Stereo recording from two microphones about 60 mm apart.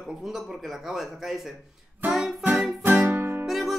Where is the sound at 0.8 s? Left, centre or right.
Centre.